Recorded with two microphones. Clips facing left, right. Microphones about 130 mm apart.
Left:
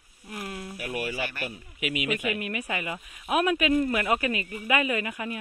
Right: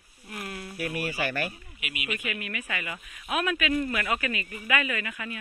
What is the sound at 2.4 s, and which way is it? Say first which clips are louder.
Speech: left 4 dB; 35° left (ahead or behind).